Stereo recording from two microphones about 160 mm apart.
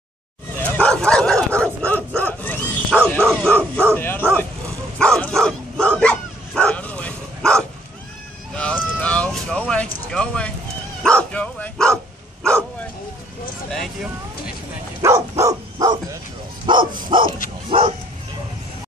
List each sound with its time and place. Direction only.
0.6 s dog: 10° left (ahead or behind)
3.3 s bow-wow: 10° left (ahead or behind)
8.5 s a sound: 5° left (ahead or behind)
11.0 s dog: 5° left (ahead or behind)
15.0 s dog: 20° right (ahead or behind)
17.6 s bow-wow: 35° right (ahead or behind)